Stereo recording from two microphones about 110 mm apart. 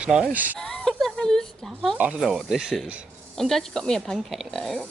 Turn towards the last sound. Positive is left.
turn(degrees=0)  # may be behind; listen again after turning